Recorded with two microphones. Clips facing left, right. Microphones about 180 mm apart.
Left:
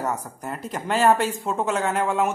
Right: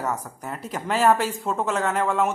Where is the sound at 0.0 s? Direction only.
Centre (ahead or behind).